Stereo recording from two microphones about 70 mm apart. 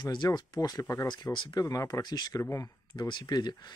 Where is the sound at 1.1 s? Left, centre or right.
Left.